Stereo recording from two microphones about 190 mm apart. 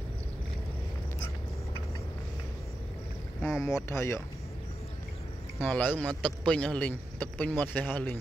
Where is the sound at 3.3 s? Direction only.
15° left (ahead or behind).